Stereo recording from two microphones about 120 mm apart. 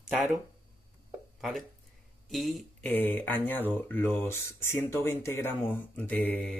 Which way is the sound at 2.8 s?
15° left (ahead or behind).